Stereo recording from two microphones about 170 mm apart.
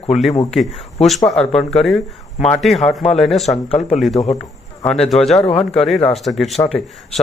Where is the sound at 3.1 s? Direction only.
Centre (ahead or behind).